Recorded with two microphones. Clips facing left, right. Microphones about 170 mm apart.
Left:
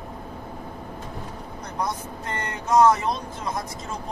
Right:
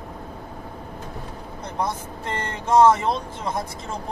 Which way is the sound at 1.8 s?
30° right (ahead or behind).